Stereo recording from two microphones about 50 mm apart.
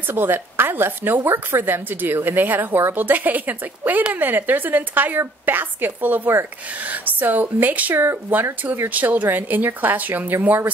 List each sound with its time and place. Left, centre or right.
0.1 s a woman's voice: right
7.9 s a woman's voice: right
8.9 s a woman's voice: right